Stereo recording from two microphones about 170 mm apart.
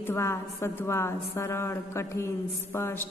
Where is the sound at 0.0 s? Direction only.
15° left (ahead or behind).